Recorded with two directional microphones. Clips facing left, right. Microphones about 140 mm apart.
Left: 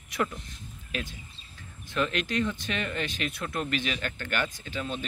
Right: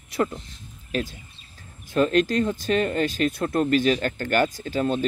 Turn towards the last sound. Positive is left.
turn(degrees=-40)  # may be behind; listen again after turning